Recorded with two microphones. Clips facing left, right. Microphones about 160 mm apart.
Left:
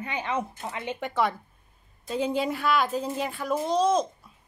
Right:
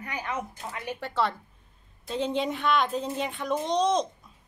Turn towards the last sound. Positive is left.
turn(degrees=5)  # may be behind; listen again after turning